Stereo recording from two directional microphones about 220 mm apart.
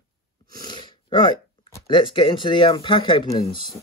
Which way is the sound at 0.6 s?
20° left (ahead or behind).